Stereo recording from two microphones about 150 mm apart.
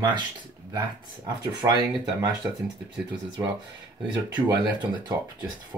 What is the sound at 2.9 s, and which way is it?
Speech, 10° right (ahead or behind).